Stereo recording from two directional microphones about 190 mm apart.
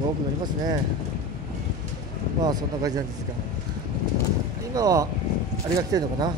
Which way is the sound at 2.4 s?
20° right (ahead or behind).